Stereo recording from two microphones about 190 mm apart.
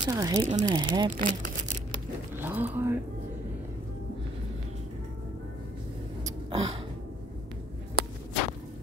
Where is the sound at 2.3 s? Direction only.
10° right (ahead or behind).